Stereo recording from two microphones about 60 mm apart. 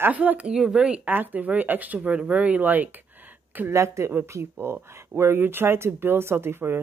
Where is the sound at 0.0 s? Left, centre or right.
Right.